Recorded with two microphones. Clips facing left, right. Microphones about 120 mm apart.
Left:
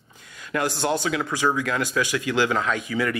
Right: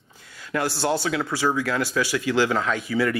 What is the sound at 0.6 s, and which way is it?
Speech, 15° left (ahead or behind).